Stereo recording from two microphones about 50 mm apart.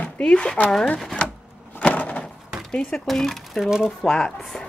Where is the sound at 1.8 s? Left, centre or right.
Left.